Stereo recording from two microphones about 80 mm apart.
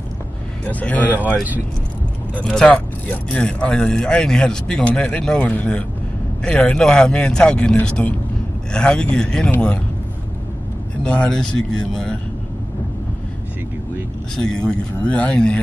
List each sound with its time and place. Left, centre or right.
0.7 s speech: centre
2.4 s speech: centre
11.1 s speech: centre
14.3 s speech: centre